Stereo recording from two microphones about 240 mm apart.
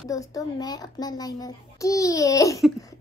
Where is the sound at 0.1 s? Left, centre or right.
Centre.